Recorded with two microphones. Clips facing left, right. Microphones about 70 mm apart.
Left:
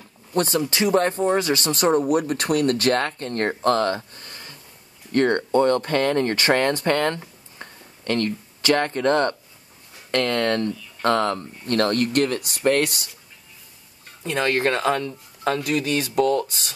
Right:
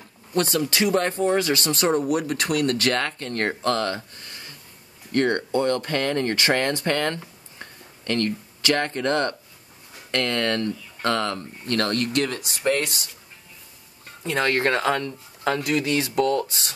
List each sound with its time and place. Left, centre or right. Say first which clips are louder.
0.3 s speech: left 1 dB; left
7.2 s a sound: left 1 dB; left
8.6 s speech: left 3 dB; left
12.6 s speech: left 3 dB; left
14.3 s speech: even; right